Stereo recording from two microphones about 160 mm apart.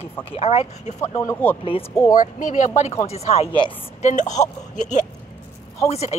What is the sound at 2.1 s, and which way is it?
Speech, 50° left (ahead or behind).